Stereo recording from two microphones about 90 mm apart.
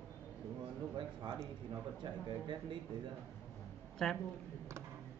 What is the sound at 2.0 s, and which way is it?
Speech, 60° right (ahead or behind).